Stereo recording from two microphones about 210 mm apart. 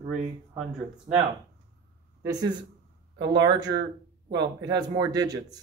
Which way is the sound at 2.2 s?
20° right (ahead or behind).